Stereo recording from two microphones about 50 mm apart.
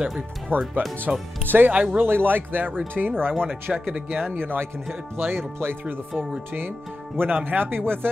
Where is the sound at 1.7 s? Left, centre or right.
Right.